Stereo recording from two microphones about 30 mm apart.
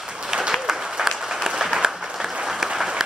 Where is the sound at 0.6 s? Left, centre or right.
Centre.